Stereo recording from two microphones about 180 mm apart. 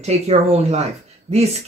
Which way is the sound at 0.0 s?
35° right (ahead or behind).